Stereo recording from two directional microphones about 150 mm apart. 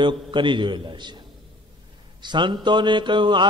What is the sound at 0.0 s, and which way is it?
A man's voice, 30° right (ahead or behind).